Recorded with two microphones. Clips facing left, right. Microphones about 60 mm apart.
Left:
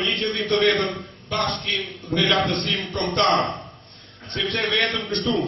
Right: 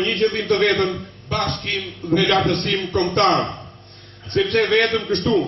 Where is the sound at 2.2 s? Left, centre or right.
Right.